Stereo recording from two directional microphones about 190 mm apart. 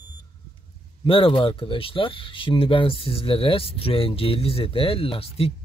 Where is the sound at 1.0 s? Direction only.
25° left (ahead or behind).